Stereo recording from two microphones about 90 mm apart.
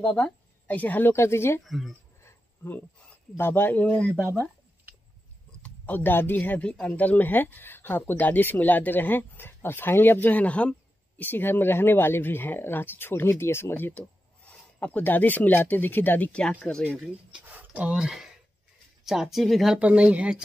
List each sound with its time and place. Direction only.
0.0 s speech: 15° left (ahead or behind)
1.6 s speech: centre (ahead or behind)
2.2 s a sound: 20° left (ahead or behind)
3.3 s speech: 25° left (ahead or behind)
5.6 s speech: 20° left (ahead or behind)
17.5 s a sound: 15° right (ahead or behind)
19.0 s speech: 5° right (ahead or behind)
19.8 s speech: 15° right (ahead or behind)